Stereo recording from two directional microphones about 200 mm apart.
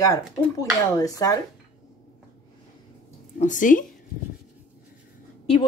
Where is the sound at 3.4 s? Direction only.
40° left (ahead or behind).